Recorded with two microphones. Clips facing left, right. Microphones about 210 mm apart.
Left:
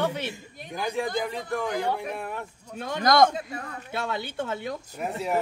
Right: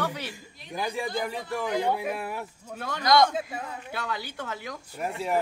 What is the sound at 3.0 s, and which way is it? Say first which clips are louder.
Speech: left 2 dB; 50° left (ahead or behind).